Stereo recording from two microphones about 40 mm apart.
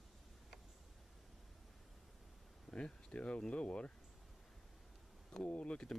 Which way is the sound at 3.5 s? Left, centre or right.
Left.